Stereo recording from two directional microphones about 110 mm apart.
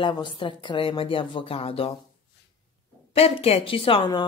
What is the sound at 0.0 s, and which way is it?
Speech, 45° left (ahead or behind).